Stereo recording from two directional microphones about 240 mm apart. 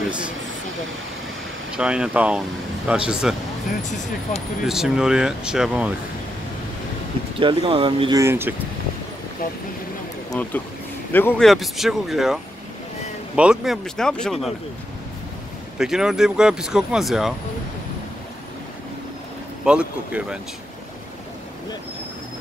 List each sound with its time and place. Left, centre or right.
1.8 s speech: centre
7.3 s speech: right
10.3 s speech: centre
13.4 s speech: centre
15.8 s speech: centre
19.6 s speech: centre